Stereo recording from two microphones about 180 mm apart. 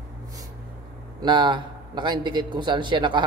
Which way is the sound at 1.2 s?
25° right (ahead or behind).